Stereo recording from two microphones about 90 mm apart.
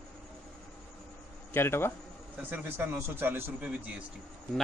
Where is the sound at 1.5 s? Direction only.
25° left (ahead or behind).